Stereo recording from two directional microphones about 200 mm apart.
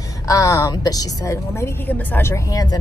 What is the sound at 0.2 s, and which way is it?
A woman's voice, 15° left (ahead or behind).